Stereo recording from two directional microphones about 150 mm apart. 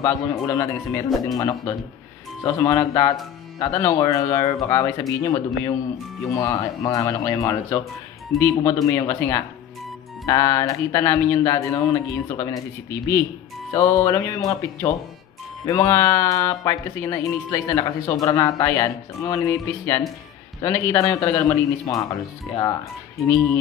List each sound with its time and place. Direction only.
0.0 s speech: 20° left (ahead or behind)